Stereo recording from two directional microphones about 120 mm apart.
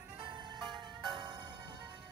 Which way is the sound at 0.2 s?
40° right (ahead or behind).